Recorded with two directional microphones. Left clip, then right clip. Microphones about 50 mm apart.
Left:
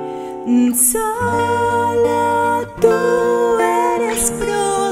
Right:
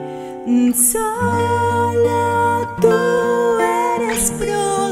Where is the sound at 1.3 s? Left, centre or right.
Centre.